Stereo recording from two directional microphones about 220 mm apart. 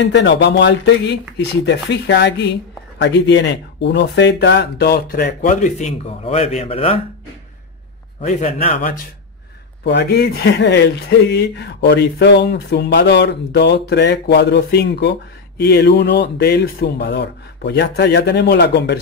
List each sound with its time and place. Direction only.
0.0 s speech: 50° left (ahead or behind); by 7.0 s 25° left (ahead or behind)
8.2 s speech: 30° left (ahead or behind)
9.8 s speech: 50° left (ahead or behind)